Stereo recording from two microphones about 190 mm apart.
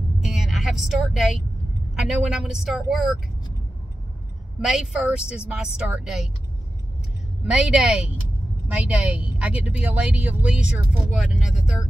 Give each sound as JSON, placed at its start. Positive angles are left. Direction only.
{"t": 0.2, "sound": "vehicle", "side_deg": 0}
{"t": 2.0, "sound": "speech", "side_deg": -5}
{"t": 4.6, "sound": "speech", "side_deg": -5}
{"t": 7.5, "sound": "speech", "side_deg": -5}